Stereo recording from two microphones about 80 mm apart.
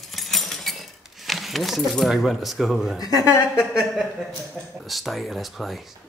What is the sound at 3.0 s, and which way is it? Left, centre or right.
Speech, left.